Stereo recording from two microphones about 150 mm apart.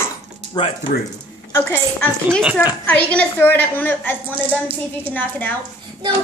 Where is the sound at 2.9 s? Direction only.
10° left (ahead or behind).